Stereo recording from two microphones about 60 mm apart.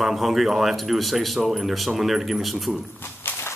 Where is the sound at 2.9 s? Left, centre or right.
Left.